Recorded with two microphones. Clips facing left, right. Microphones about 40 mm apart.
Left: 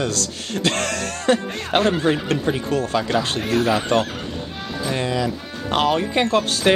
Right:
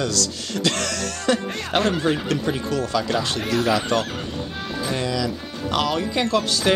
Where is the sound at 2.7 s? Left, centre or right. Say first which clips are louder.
Left 1 dB; left.